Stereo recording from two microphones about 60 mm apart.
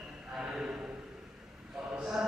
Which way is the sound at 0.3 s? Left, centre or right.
Centre.